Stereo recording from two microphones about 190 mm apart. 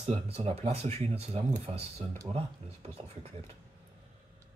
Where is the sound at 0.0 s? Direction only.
35° right (ahead or behind).